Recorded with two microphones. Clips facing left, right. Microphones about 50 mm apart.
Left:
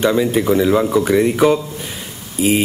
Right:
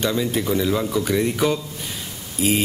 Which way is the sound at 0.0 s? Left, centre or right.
Centre.